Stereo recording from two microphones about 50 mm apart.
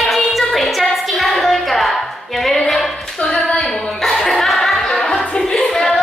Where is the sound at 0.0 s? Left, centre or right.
Centre.